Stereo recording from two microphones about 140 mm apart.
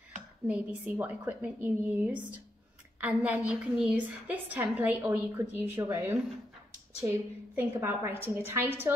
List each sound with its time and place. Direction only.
0.5 s a woman's voice: 10° right (ahead or behind)